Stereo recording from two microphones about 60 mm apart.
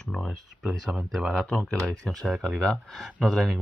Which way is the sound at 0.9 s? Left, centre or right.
Centre.